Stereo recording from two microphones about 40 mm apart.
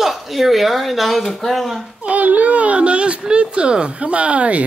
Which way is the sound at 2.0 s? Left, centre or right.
Right.